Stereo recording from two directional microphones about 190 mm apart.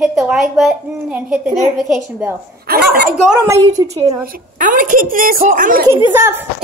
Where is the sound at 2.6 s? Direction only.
55° right (ahead or behind).